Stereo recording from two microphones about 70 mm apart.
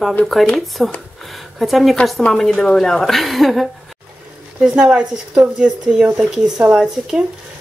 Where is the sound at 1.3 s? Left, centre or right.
Centre.